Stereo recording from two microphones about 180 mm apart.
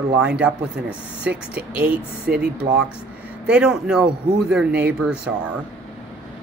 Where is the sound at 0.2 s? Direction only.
5° right (ahead or behind).